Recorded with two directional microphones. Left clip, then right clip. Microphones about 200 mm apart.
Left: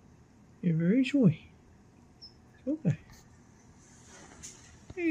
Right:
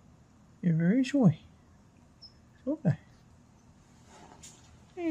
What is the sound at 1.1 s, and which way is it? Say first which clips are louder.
Speech: even; 30° right (ahead or behind).